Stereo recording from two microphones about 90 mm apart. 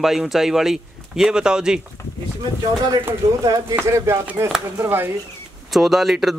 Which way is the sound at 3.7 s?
30° right (ahead or behind).